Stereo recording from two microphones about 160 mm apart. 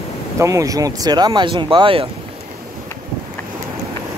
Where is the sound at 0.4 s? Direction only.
20° right (ahead or behind).